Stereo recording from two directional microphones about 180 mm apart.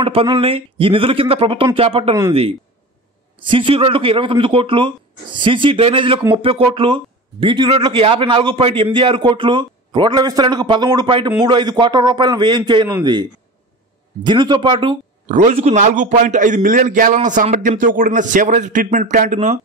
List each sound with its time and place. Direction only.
0.0 s speech: 30° right (ahead or behind)
3.3 s a man's voice: 30° right (ahead or behind)
15.2 s a man's voice: 40° right (ahead or behind)